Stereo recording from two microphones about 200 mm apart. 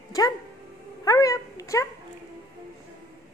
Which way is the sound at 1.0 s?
15° left (ahead or behind).